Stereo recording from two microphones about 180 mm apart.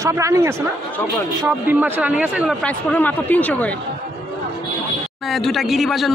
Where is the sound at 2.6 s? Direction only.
10° left (ahead or behind).